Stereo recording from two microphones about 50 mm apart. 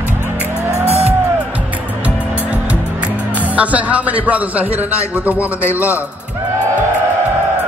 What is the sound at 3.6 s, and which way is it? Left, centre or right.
A man's voice, right.